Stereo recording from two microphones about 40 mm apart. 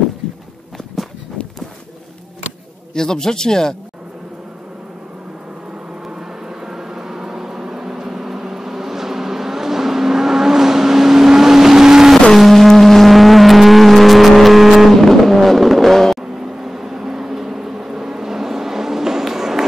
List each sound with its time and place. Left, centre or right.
0.2 s walk: left
2.9 s speech: centre
6.0 s vehicle: centre
12.4 s vehicle: centre
15.0 s music: centre
16.2 s vehicle: centre